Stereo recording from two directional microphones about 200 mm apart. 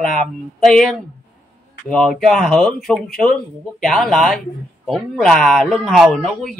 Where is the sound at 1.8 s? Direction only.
Centre (ahead or behind).